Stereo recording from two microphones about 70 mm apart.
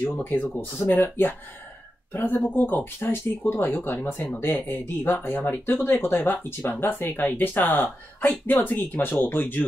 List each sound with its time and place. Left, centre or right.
0.2 s speech: left